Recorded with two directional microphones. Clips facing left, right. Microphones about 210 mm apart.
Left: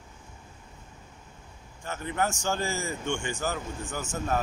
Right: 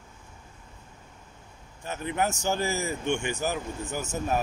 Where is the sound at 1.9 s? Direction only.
20° right (ahead or behind).